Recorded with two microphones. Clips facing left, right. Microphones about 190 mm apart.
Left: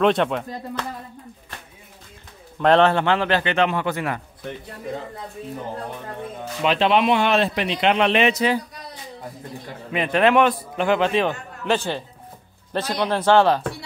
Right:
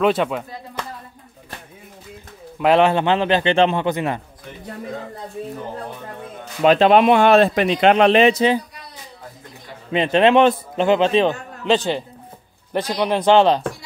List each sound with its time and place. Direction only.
0.0 s speech: 5° right (ahead or behind)
2.6 s a man's voice: 10° right (ahead or behind)
6.6 s a man's voice: 45° right (ahead or behind); by 8.5 s 30° right (ahead or behind)
9.9 s a man's voice: 25° right (ahead or behind)